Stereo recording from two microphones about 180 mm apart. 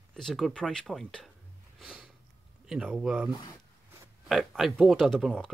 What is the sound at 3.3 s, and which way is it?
Speech, 25° left (ahead or behind).